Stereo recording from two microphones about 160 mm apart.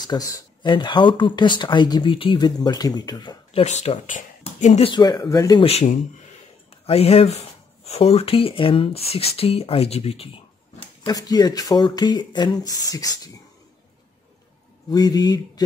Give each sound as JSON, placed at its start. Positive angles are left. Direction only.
{"t": 0.0, "sound": "speech", "side_deg": 25}
{"t": 3.6, "sound": "speech", "side_deg": 45}
{"t": 5.6, "sound": "speech", "side_deg": 40}
{"t": 11.1, "sound": "speech", "side_deg": 25}
{"t": 14.9, "sound": "speech", "side_deg": 25}